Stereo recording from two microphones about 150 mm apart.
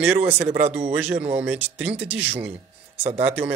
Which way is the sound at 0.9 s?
10° right (ahead or behind).